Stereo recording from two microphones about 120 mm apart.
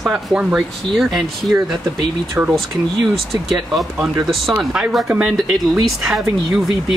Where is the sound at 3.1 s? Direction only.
Centre (ahead or behind).